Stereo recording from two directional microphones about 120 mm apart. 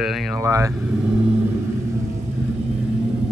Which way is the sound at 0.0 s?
Centre (ahead or behind).